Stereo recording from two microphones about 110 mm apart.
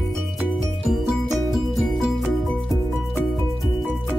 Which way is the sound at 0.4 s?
Centre (ahead or behind).